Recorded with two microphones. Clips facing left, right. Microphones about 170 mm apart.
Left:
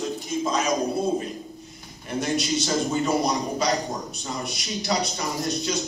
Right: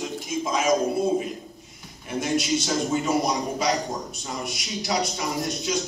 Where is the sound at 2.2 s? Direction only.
Centre (ahead or behind).